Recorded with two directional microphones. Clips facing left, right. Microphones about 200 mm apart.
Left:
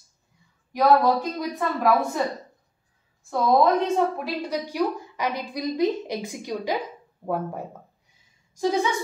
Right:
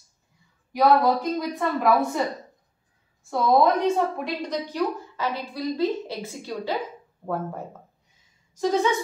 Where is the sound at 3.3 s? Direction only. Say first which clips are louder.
Even; centre (ahead or behind).